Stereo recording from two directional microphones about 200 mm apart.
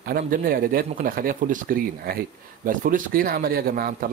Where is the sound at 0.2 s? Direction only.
45° right (ahead or behind).